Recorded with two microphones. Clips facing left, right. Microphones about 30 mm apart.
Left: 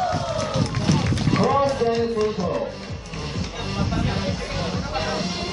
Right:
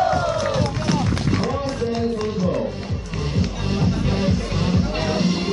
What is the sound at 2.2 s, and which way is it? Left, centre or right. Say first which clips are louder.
Speech: right 1 dB; centre.